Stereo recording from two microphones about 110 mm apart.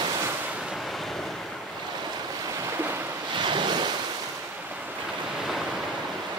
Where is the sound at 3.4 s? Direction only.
45° right (ahead or behind).